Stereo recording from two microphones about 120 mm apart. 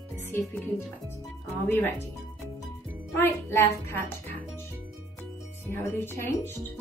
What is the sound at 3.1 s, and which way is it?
Speech, 20° left (ahead or behind).